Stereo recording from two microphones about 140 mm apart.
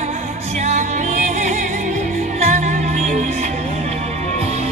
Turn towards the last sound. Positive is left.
turn(degrees=-55)  # may be behind; listen again after turning